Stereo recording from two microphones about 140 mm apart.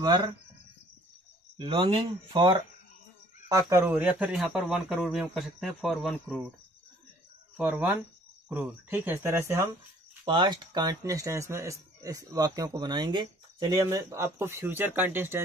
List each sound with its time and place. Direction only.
0.0 s speech: 30° right (ahead or behind)
1.6 s speech: 40° right (ahead or behind)
3.4 s speech: 25° right (ahead or behind); by 6.5 s centre (ahead or behind)
7.5 s speech: 10° right (ahead or behind)
10.2 s speech: 30° right (ahead or behind); by 15.4 s 15° right (ahead or behind)